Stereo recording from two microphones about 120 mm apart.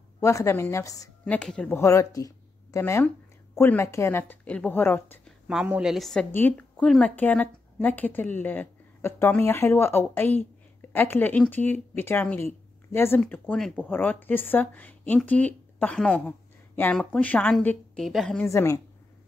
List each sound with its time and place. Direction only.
0.2 s speech: 25° left (ahead or behind)
1.2 s a woman's voice: 5° left (ahead or behind)
1.8 s a woman's voice: 25° left (ahead or behind)
5.2 s a woman's voice: 5° right (ahead or behind)
6.3 s a woman's voice: 15° left (ahead or behind)
13.3 s a woman's voice: 10° left (ahead or behind)
18.5 s speech: 25° left (ahead or behind)